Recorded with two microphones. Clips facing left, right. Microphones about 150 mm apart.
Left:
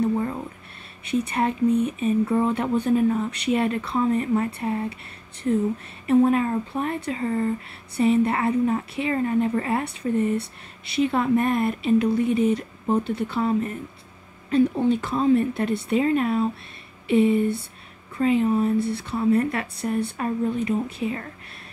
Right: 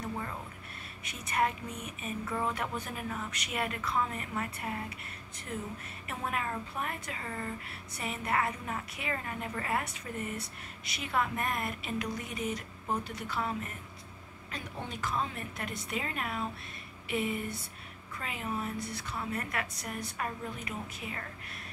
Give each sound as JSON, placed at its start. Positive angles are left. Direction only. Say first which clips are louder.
{"t": 0.0, "sound": "a sound", "louder": "left 15 dB", "side_deg": 40}
{"t": 1.0, "sound": "speech", "louder": "left 9 dB", "side_deg": 30}
{"t": 6.0, "sound": "speech", "louder": "left 18 dB", "side_deg": 30}